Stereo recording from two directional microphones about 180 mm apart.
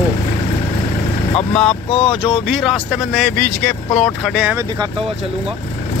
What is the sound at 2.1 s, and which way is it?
Speech, 30° left (ahead or behind).